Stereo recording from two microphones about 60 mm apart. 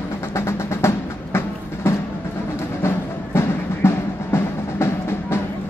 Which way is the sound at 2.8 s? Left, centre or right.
Left.